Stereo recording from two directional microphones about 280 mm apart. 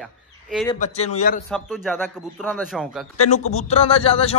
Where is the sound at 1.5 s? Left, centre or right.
Centre.